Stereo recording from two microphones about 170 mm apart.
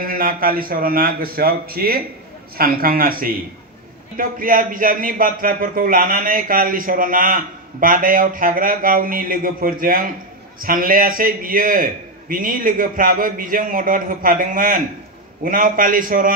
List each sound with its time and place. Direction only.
0.0 s a man's voice: 60° right (ahead or behind)